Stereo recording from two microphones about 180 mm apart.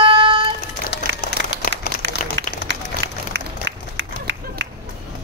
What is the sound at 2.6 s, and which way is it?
Run, 80° right.